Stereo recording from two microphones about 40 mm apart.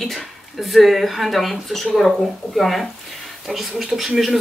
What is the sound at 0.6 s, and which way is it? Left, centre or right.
Speech, centre.